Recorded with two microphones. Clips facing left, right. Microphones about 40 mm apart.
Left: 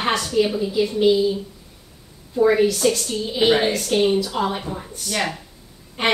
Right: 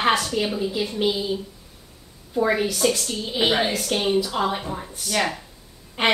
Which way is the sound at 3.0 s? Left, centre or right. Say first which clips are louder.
Left 3 dB; centre.